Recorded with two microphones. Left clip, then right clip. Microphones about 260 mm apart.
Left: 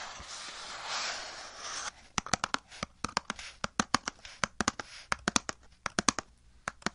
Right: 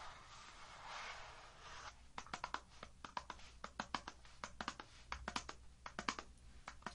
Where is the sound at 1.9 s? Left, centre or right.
Left.